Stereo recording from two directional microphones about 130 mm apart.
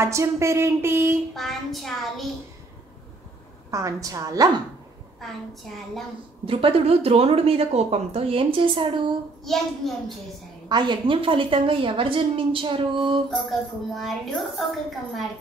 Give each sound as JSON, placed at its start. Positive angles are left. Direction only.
{"t": 0.0, "sound": "speech", "side_deg": -20}
{"t": 1.3, "sound": "a woman's voice", "side_deg": 0}
{"t": 3.7, "sound": "speech", "side_deg": -25}
{"t": 6.4, "sound": "speech", "side_deg": -45}
{"t": 9.5, "sound": "a woman's voice", "side_deg": 0}
{"t": 10.7, "sound": "a woman's voice", "side_deg": -35}
{"t": 13.3, "sound": "a woman's voice", "side_deg": 0}